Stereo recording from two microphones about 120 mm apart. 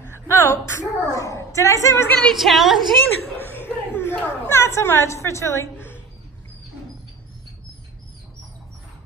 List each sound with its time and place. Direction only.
0.1 s a sound: 20° left (ahead or behind)
2.2 s a woman's voice: centre (ahead or behind)
3.9 s a woman's voice: 20° left (ahead or behind)